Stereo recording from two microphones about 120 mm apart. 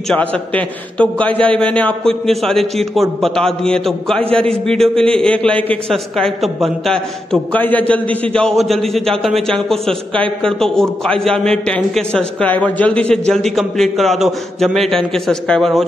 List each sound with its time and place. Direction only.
0.1 s a man's voice: 10° left (ahead or behind)
7.5 s a man's voice: 15° left (ahead or behind)